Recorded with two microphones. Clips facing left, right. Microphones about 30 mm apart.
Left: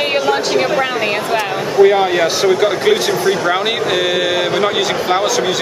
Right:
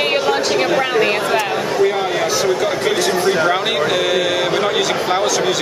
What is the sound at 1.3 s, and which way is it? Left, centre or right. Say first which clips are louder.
Speech: left 2 dB; centre.